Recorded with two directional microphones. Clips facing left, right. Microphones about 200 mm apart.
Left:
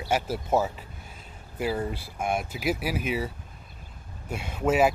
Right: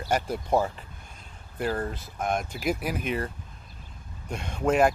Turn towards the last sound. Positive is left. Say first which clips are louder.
# even
turn(degrees=5)  # may be behind; listen again after turning